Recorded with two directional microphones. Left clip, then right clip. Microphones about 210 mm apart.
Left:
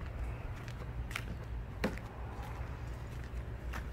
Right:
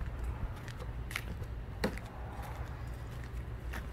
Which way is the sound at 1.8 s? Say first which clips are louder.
Right 1 dB; 50° right (ahead or behind).